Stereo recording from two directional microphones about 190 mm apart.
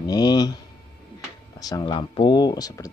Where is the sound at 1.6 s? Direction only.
20° left (ahead or behind).